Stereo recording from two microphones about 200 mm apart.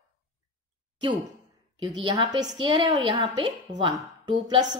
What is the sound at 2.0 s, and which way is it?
A woman's voice, 25° right (ahead or behind).